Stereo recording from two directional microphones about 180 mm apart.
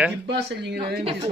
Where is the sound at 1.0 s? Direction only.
30° right (ahead or behind).